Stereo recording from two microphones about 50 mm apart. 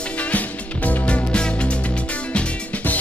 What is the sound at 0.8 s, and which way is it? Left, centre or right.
Music, left.